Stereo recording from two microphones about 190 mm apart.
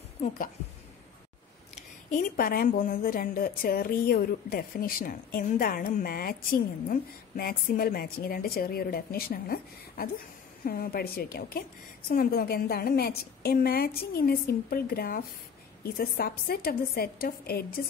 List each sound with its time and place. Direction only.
2.0 s a woman's voice: 45° left (ahead or behind)